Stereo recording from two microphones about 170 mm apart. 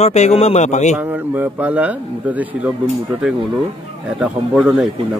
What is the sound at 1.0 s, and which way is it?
Speech, 10° right (ahead or behind).